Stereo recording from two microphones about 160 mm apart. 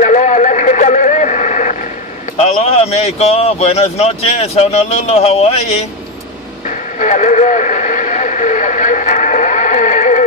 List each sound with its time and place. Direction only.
0.0 s vehicle: 50° left (ahead or behind)
2.4 s speech: 40° left (ahead or behind)
7.0 s radio: 50° left (ahead or behind)